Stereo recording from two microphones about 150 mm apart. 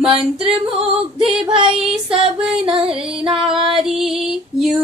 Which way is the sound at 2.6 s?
35° right (ahead or behind).